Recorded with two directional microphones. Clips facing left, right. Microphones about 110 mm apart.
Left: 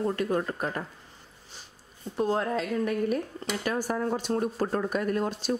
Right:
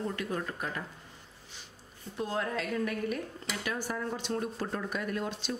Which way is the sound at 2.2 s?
45° left (ahead or behind).